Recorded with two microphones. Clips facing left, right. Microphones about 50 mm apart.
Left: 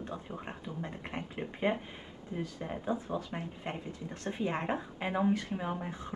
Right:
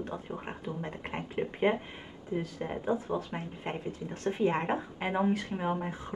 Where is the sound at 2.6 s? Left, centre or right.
Centre.